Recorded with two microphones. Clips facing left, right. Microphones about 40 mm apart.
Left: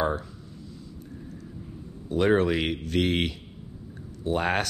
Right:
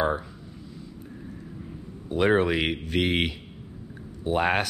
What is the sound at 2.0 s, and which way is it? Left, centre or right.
Speech, centre.